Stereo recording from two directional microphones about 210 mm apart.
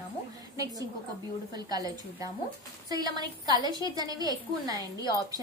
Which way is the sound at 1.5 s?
20° right (ahead or behind).